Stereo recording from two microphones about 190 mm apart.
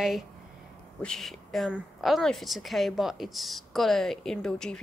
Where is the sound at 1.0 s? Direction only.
Centre (ahead or behind).